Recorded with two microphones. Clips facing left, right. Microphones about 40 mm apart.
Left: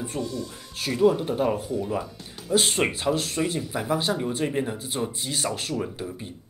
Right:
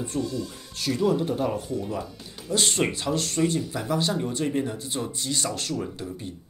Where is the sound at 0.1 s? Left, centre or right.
Left.